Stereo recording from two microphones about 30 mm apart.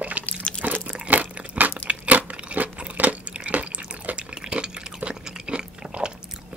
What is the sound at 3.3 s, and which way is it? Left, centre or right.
Drip, right.